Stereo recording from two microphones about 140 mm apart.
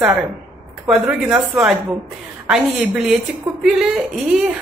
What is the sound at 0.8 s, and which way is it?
A woman's voice, 5° right (ahead or behind).